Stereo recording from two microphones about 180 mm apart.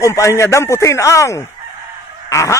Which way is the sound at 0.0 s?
15° left (ahead or behind).